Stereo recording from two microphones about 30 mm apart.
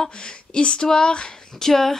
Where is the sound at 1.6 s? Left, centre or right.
Centre.